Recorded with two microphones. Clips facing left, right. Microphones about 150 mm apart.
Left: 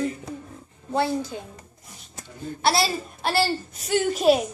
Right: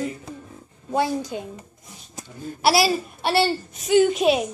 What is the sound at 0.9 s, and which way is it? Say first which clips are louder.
A woman's voice: right 1 dB; 15° right (ahead or behind).